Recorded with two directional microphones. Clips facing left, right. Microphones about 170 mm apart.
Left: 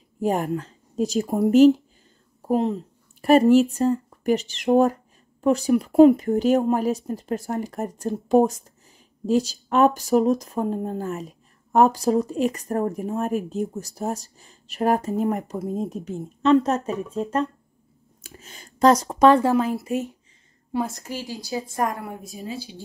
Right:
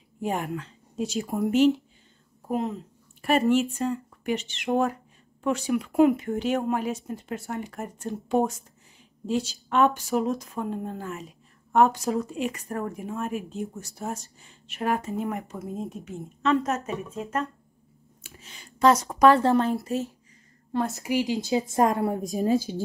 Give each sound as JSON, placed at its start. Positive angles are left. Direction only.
{"t": 0.2, "sound": "a woman's voice", "side_deg": 40}
{"t": 18.2, "sound": "speech", "side_deg": 40}
{"t": 19.4, "sound": "speech", "side_deg": 5}
{"t": 20.7, "sound": "a woman's voice", "side_deg": 0}
{"t": 21.0, "sound": "a woman's voice", "side_deg": -15}
{"t": 22.1, "sound": "a woman's voice", "side_deg": -40}